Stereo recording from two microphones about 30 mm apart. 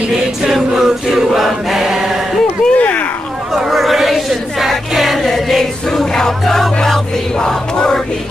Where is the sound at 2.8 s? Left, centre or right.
Left.